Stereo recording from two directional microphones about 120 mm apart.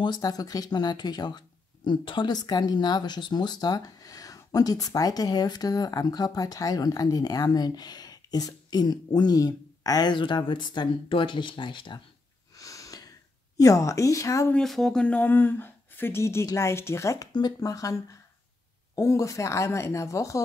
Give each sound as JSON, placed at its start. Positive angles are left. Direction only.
{"t": 0.0, "sound": "speech", "side_deg": 35}
{"t": 12.5, "sound": "a sound", "side_deg": 30}
{"t": 13.6, "sound": "speech", "side_deg": 25}
{"t": 14.5, "sound": "speech", "side_deg": 5}